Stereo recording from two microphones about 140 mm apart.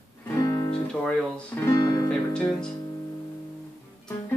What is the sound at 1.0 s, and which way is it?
Speech, 10° left (ahead or behind).